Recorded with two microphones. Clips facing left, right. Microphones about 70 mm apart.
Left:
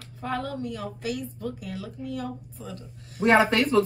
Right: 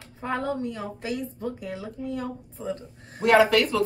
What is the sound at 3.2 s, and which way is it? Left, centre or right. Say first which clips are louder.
Speech: right 1 dB; left.